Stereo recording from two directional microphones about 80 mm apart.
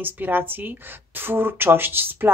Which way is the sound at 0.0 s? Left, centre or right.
Right.